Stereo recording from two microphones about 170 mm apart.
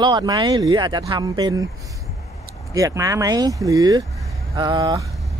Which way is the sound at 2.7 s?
20° right (ahead or behind).